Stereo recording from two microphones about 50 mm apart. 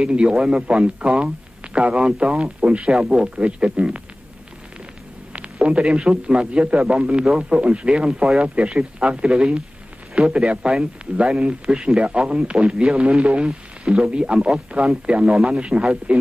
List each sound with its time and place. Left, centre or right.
0.0 s a man's voice: centre
5.3 s a man's voice: right